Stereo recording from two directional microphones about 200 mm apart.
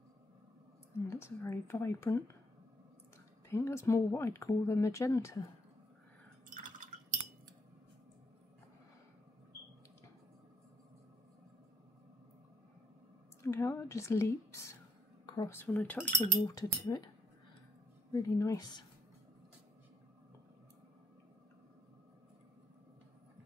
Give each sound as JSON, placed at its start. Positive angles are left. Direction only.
{"t": 1.1, "sound": "speech", "side_deg": 15}
{"t": 3.4, "sound": "speech", "side_deg": 15}
{"t": 6.5, "sound": "wind chime", "side_deg": -40}
{"t": 13.4, "sound": "speech", "side_deg": 15}
{"t": 18.1, "sound": "speech", "side_deg": 15}